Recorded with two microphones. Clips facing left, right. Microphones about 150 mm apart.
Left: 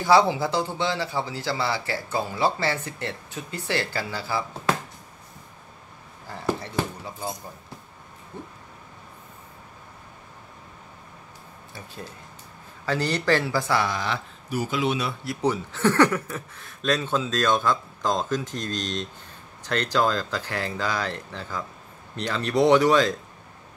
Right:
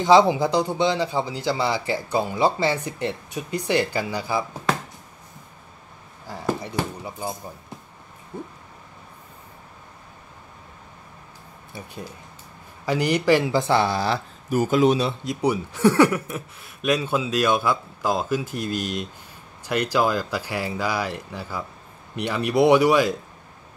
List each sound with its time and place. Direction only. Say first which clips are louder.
0.0 s speech: right 3 dB; 20° right (ahead or behind)
6.2 s a sound: right 1 dB; 15° right (ahead or behind)
8.3 s speech: right 5 dB; 10° right (ahead or behind)
11.7 s speech: right 3 dB; 15° right (ahead or behind); by 15.0 s 45° right (ahead or behind)
15.0 s speech: right 4 dB; 25° right (ahead or behind)
15.4 s speech: right 3 dB; 10° right (ahead or behind)